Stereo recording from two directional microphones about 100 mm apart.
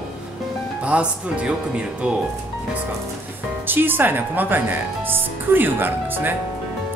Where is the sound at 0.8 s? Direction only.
10° right (ahead or behind).